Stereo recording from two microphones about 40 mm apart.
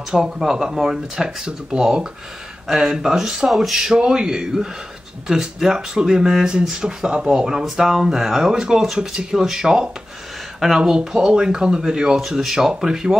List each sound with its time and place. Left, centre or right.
0.1 s speech: centre